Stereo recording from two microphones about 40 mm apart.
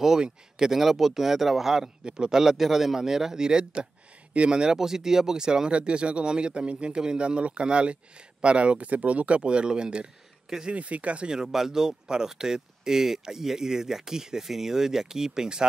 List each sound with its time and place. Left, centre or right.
0.0 s speech: centre
2.0 s speech: centre
4.7 s speech: centre
10.7 s speech: right
11.2 s speech: centre